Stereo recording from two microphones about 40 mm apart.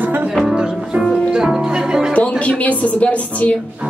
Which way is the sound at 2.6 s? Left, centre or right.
Left.